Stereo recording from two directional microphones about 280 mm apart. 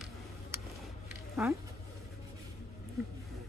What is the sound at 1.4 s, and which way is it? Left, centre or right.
Speech, centre.